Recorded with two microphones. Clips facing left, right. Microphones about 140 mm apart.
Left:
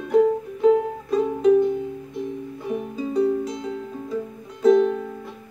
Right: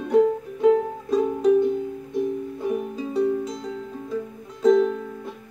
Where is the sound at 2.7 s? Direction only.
10° right (ahead or behind).